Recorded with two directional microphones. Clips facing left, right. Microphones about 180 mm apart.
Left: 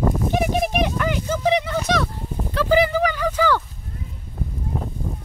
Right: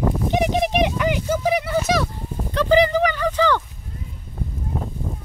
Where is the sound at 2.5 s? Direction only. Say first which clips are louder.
Right 2 dB; 10° left (ahead or behind).